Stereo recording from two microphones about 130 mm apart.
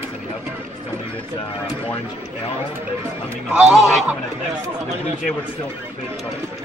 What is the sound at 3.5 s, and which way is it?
Speech, 5° right (ahead or behind).